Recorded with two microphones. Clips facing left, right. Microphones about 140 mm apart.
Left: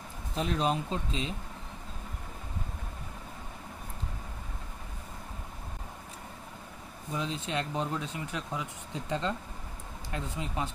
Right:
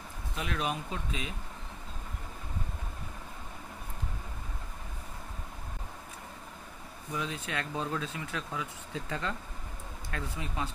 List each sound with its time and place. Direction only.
0.4 s speech: 30° left (ahead or behind)
7.1 s speech: 20° left (ahead or behind)